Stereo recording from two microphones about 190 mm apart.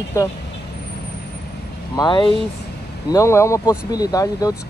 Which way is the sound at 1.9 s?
25° left (ahead or behind).